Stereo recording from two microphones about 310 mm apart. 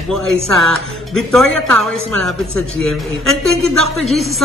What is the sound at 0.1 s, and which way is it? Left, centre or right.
Speech, centre.